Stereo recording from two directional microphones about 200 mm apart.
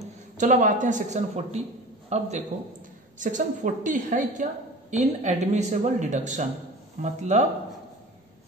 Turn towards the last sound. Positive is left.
turn(degrees=-35)  # may be behind; listen again after turning